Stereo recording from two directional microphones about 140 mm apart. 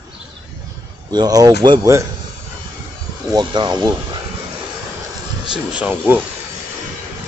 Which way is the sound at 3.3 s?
30° right (ahead or behind).